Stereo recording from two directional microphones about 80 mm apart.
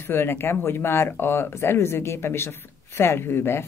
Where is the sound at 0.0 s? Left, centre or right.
Left.